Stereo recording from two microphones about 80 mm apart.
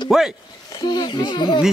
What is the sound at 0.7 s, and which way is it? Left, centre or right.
Speech, left.